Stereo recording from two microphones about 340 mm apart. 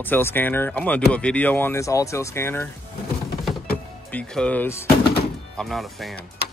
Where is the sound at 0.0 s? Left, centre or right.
Centre.